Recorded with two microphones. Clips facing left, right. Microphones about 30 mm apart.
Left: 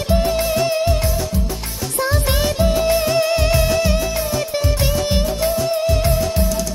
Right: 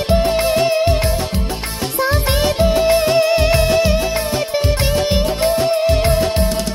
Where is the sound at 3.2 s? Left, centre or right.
Centre.